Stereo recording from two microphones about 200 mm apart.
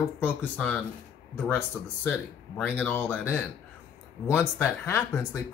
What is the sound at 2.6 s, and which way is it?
Speech, 10° left (ahead or behind).